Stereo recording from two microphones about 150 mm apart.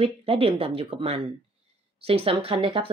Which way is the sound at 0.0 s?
40° right (ahead or behind).